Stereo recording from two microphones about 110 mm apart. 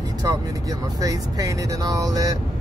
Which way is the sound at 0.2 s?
35° right (ahead or behind).